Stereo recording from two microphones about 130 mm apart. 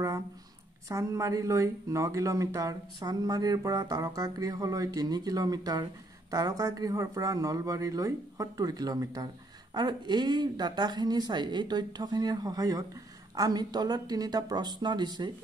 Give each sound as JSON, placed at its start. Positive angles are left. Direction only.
{"t": 0.8, "sound": "a woman's voice", "side_deg": -25}